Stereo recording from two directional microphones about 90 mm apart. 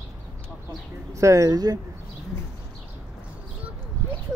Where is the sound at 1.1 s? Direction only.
35° right (ahead or behind).